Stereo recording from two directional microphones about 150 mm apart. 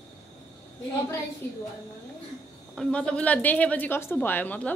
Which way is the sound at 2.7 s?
5° left (ahead or behind).